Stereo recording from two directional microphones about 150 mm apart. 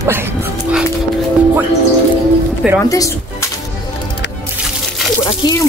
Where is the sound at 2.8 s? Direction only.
20° left (ahead or behind).